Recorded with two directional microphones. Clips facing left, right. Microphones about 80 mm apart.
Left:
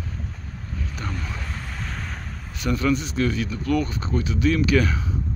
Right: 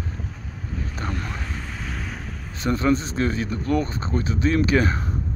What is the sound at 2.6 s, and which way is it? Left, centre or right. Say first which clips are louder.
Speech: right 2 dB; right.